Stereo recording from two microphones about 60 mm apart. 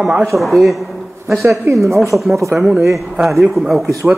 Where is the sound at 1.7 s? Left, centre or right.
Right.